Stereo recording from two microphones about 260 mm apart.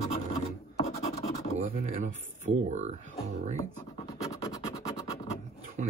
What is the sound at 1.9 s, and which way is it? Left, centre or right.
Speech, right.